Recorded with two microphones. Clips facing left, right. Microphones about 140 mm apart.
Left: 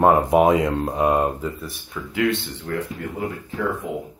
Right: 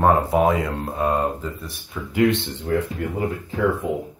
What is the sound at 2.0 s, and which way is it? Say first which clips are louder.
Speech: right 1 dB; 10° right (ahead or behind).